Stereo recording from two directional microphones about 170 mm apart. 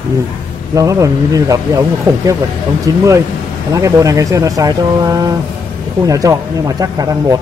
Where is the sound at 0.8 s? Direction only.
20° right (ahead or behind).